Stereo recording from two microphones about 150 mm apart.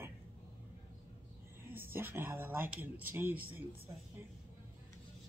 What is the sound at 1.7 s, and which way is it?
Speech, 15° right (ahead or behind).